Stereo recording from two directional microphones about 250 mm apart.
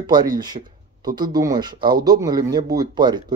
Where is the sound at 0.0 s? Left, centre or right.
Centre.